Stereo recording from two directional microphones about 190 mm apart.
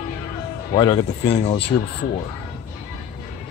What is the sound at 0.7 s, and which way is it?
Speech, 25° left (ahead or behind).